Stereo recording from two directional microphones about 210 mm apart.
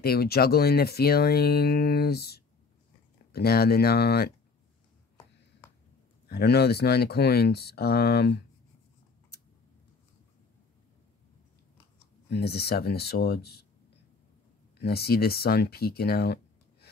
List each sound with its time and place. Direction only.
0.0 s speech: 45° left (ahead or behind)
6.2 s speech: 50° left (ahead or behind)
12.3 s speech: 50° left (ahead or behind)
14.8 s speech: 50° left (ahead or behind)